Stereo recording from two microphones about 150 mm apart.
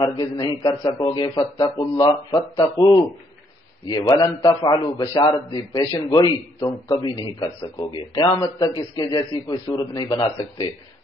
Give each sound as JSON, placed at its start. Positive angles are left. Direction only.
{"t": 0.0, "sound": "a man's voice", "side_deg": 25}